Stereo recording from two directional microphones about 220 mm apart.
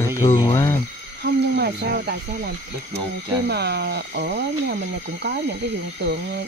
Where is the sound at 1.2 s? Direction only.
50° right (ahead or behind).